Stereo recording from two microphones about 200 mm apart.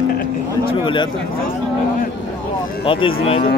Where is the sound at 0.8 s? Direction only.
25° left (ahead or behind).